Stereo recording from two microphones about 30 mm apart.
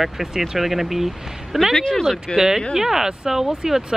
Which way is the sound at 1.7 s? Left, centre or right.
Centre.